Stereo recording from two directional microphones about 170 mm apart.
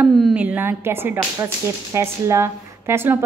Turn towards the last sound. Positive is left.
turn(degrees=-15)  # may be behind; listen again after turning